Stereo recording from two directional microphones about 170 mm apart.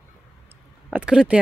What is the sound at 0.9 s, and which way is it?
Speech, 5° right (ahead or behind).